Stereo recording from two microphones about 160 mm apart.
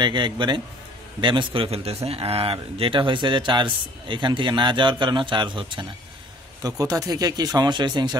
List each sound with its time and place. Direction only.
0.0 s a man's voice: 30° right (ahead or behind)